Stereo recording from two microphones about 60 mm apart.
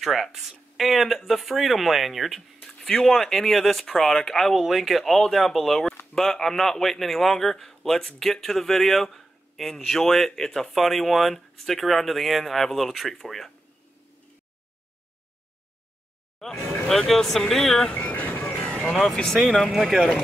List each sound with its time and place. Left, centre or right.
0.0 s a man's voice: centre
16.4 s a man's voice: centre
18.0 s music: left
19.1 s a man's voice: centre